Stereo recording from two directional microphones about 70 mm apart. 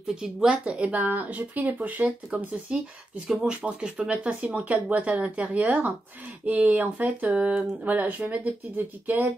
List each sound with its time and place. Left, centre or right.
0.1 s speech: centre; by 9.3 s right